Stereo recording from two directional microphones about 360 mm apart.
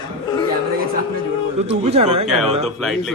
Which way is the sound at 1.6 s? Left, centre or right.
Centre.